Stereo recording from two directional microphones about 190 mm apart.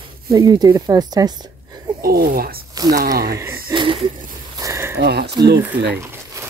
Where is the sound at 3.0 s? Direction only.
55° right (ahead or behind).